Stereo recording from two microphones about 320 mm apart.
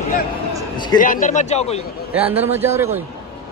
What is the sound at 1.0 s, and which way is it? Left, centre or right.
Speech, left.